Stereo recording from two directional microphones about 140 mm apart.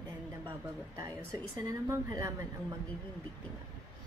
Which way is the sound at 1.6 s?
25° right (ahead or behind).